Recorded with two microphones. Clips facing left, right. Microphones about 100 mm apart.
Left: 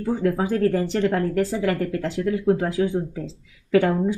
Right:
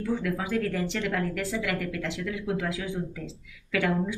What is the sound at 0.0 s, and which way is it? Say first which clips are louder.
Speech: left 7 dB; 40° left (ahead or behind).